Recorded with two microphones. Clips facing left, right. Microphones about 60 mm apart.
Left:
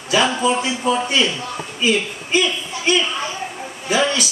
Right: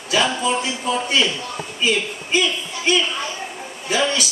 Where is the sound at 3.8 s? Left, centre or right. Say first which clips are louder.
Left 2 dB; centre.